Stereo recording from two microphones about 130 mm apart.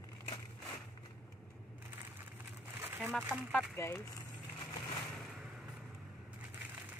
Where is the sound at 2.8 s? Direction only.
15° right (ahead or behind).